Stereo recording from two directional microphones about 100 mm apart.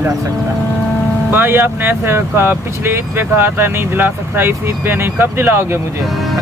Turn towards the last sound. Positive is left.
turn(degrees=-20)  # may be behind; listen again after turning